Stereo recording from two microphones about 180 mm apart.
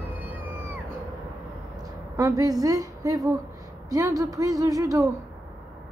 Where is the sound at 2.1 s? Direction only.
20° right (ahead or behind).